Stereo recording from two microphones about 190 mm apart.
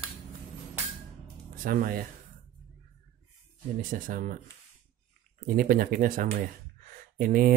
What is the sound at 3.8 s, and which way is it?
Speech, 45° right (ahead or behind).